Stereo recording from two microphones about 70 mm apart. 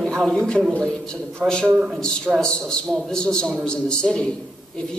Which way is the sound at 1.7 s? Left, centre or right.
Centre.